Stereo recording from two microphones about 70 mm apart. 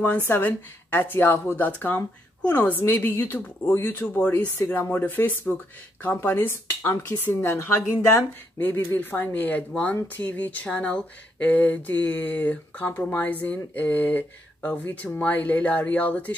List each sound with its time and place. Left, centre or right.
0.0 s speech: left
7.4 s speech: left
8.5 s speech: left